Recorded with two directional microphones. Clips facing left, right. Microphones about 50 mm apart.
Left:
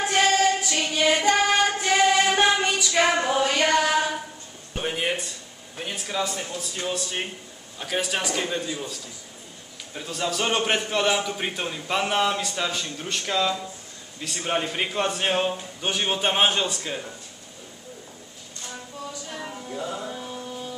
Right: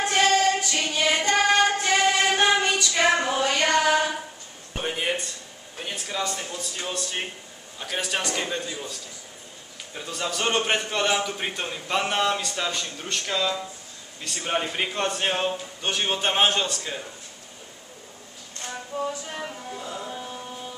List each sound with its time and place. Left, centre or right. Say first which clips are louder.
0.0 s child singing: even; centre
4.7 s a sound: left 1 dB; centre
5.8 s a man's voice: left 2 dB; centre
9.9 s a man's voice: left 2 dB; centre
18.9 s music: right 10 dB; right
20.1 s music: left 1 dB; centre